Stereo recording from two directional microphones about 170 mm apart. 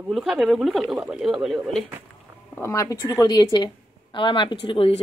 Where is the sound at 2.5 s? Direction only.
15° left (ahead or behind).